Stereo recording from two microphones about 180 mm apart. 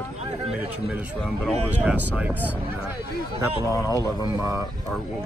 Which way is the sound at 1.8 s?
10° right (ahead or behind).